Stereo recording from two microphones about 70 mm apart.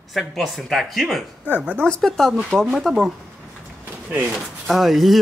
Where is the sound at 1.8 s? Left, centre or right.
Centre.